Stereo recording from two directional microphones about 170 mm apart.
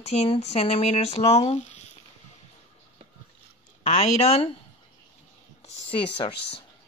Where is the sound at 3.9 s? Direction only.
40° left (ahead or behind).